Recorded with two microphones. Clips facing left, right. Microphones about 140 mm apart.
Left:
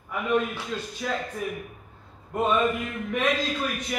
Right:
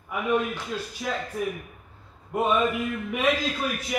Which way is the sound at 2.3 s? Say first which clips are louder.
Even; 10° right (ahead or behind).